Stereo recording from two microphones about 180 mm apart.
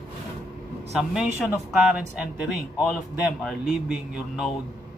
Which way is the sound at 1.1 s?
5° right (ahead or behind).